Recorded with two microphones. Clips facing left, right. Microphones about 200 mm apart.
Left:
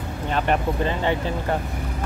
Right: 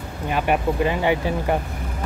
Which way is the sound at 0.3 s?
10° right (ahead or behind).